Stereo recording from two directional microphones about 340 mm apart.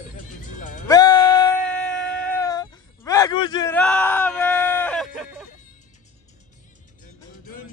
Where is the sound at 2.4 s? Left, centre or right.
Centre.